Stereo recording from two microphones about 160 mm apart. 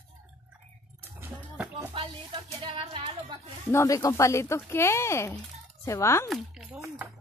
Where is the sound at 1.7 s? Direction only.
35° right (ahead or behind).